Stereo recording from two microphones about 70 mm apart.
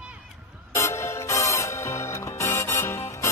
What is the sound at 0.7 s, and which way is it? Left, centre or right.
Music, left.